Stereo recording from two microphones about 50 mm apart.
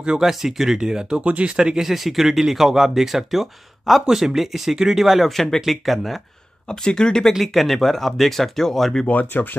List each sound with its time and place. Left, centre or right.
0.2 s speech: centre; by 1.5 s right
1.6 s speech: centre
6.7 s speech: centre
7.4 s speech: centre
9.0 s speech: left